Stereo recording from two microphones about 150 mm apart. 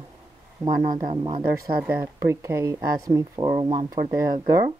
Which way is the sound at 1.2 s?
30° right (ahead or behind).